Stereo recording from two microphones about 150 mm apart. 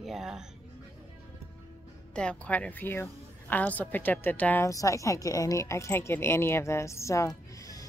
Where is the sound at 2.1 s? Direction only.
10° left (ahead or behind).